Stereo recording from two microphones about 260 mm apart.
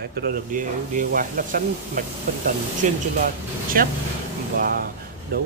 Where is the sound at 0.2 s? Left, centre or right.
Right.